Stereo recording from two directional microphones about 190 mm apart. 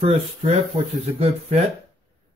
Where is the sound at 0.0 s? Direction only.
30° right (ahead or behind).